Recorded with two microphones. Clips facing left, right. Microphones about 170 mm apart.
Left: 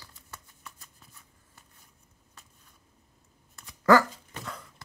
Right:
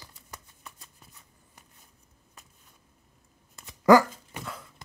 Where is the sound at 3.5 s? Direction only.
15° right (ahead or behind).